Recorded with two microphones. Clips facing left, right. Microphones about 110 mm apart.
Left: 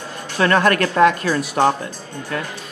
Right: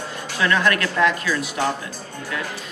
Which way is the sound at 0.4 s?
50° left (ahead or behind).